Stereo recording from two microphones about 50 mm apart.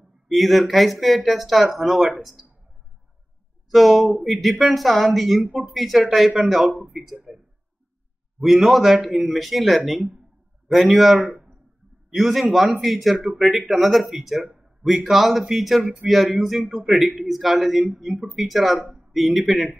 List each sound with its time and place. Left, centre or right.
0.3 s speech: centre
3.7 s speech: centre
8.4 s speech: centre
11.2 s a sound: right
12.2 s speech: centre
15.8 s speech: centre
16.1 s speech: centre